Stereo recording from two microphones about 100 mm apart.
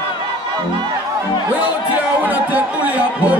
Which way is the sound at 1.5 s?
15° right (ahead or behind).